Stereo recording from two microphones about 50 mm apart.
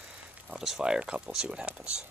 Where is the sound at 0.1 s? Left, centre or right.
Centre.